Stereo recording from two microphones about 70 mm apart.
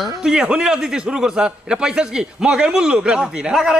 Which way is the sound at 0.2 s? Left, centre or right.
Centre.